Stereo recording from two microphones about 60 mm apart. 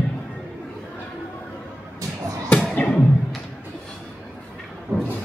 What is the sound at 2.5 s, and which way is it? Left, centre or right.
Music, left.